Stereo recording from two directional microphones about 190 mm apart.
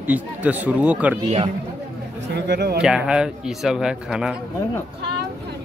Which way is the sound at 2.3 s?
60° right (ahead or behind).